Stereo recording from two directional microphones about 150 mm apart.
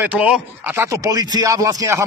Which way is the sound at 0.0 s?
10° right (ahead or behind).